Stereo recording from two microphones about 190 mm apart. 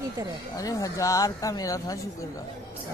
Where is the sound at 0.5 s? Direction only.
15° left (ahead or behind).